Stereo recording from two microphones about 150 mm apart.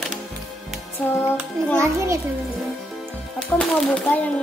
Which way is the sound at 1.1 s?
15° left (ahead or behind).